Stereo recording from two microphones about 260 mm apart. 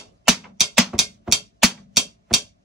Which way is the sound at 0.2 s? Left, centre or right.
Centre.